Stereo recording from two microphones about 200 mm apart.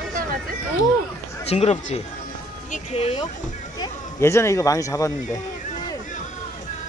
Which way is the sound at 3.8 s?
15° left (ahead or behind).